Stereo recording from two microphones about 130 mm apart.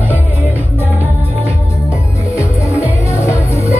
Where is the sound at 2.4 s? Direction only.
20° left (ahead or behind).